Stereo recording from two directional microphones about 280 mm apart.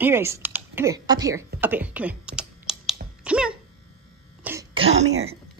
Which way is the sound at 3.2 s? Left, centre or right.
Centre.